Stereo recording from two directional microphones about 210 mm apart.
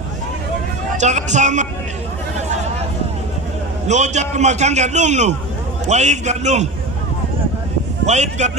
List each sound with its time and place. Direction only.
0.9 s a man's voice: 35° right (ahead or behind)
3.8 s a man's voice: 35° right (ahead or behind)
8.0 s a man's voice: 35° right (ahead or behind)